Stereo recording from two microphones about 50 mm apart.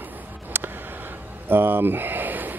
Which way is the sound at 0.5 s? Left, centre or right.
Right.